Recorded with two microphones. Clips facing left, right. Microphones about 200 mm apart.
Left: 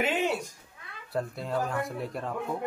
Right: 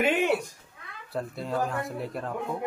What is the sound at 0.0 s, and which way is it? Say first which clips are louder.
Cat: right 4 dB; 60° right (ahead or behind).